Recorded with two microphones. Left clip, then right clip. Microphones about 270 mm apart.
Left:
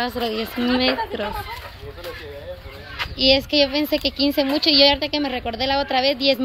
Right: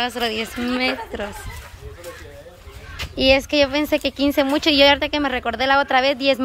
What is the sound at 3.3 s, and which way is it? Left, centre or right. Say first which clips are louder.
Speech: right 1 dB; centre.